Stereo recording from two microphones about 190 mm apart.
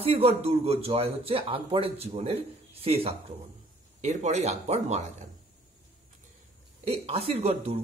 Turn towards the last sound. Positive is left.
turn(degrees=-35)  # may be behind; listen again after turning